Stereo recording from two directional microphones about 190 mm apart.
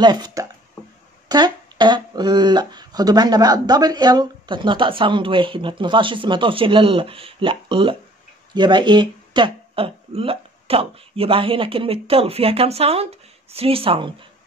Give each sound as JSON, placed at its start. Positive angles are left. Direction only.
{"t": 0.0, "sound": "speech", "side_deg": -20}